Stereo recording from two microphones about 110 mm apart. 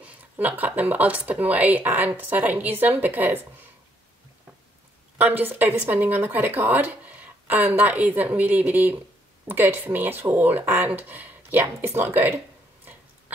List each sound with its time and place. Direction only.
0.0 s speech: 15° right (ahead or behind)
5.1 s speech: 20° right (ahead or behind)